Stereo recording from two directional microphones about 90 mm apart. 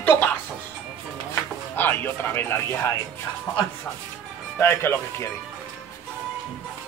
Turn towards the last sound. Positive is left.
turn(degrees=25)  # may be behind; listen again after turning